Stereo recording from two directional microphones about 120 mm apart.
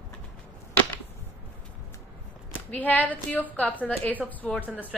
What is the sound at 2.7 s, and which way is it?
A woman's voice, 15° left (ahead or behind).